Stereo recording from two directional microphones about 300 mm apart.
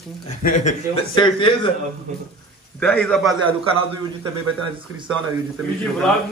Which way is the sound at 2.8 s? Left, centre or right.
Centre.